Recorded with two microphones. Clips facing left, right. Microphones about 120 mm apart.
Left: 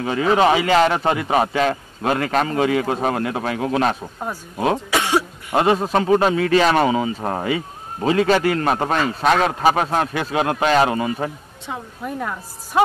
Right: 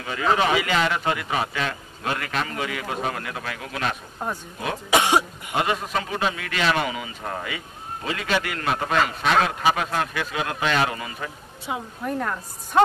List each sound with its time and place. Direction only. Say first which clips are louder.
0.0 s a man's voice: left 6 dB; 35° left (ahead or behind)
4.9 s cough: right 4 dB; 20° right (ahead or behind)
5.5 s a man's voice: left 7 dB; 30° left (ahead or behind)
12.0 s a woman's voice: left 1 dB; 5° left (ahead or behind)